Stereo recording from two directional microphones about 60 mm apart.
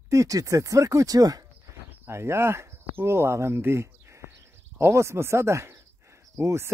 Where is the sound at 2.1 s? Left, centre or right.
Right.